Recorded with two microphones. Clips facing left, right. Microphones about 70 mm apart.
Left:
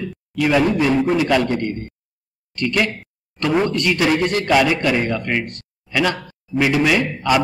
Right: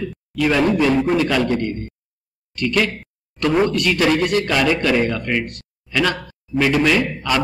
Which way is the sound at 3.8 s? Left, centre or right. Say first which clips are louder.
Even; centre.